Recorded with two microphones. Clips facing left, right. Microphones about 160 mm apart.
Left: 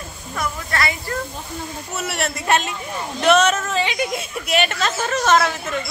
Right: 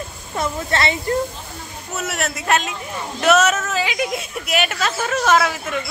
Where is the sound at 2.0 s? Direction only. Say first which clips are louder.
Right 1 dB; centre (ahead or behind).